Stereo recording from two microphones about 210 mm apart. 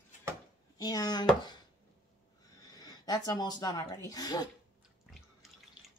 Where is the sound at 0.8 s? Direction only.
20° left (ahead or behind).